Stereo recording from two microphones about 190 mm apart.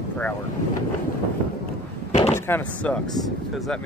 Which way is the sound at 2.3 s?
10° left (ahead or behind).